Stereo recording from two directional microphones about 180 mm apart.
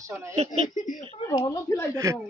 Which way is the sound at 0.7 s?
45° left (ahead or behind).